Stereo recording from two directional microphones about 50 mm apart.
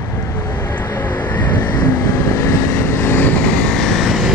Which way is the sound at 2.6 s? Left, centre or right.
Left.